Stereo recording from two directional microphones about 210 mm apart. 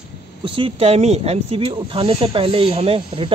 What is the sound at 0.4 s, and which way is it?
Speech, 25° right (ahead or behind).